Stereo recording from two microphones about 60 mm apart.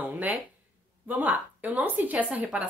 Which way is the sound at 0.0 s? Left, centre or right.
Right.